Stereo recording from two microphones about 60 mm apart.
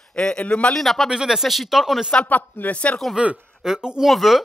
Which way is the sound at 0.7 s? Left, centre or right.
Centre.